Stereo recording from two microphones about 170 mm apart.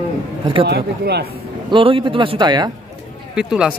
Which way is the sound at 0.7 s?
75° right (ahead or behind).